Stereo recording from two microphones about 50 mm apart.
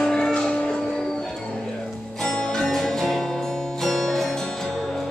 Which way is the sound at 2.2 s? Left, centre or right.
Centre.